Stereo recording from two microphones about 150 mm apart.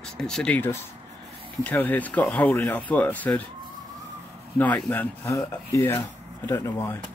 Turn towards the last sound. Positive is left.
turn(degrees=20)  # may be behind; listen again after turning